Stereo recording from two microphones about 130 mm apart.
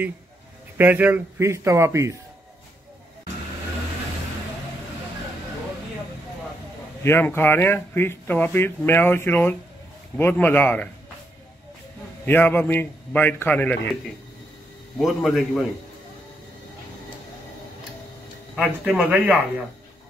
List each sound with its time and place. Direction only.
0.7 s speech: 15° right (ahead or behind)
7.0 s speech: 15° left (ahead or behind)
12.3 s speech: 15° left (ahead or behind)
15.0 s a man's voice: centre (ahead or behind)
18.6 s speech: 10° right (ahead or behind)